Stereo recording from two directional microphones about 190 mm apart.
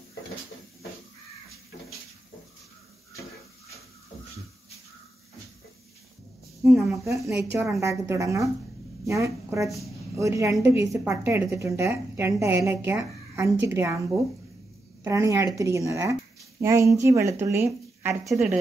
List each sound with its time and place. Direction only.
6.6 s a woman's voice: centre (ahead or behind)
7.1 s a woman's voice: 15° right (ahead or behind)
15.0 s a woman's voice: 15° right (ahead or behind)